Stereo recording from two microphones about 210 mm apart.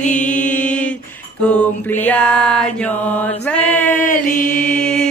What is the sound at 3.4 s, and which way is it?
Chant, 5° left (ahead or behind).